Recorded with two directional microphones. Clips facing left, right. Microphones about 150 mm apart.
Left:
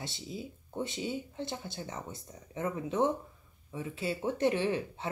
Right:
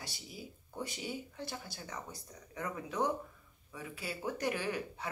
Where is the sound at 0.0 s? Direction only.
25° left (ahead or behind).